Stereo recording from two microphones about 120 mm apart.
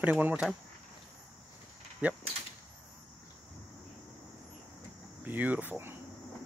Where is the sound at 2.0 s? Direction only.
10° right (ahead or behind).